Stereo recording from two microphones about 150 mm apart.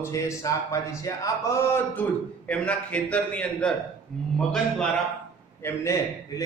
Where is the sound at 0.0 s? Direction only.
20° left (ahead or behind).